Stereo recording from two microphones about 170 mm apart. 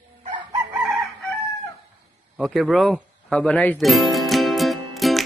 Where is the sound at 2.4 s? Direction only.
Centre (ahead or behind).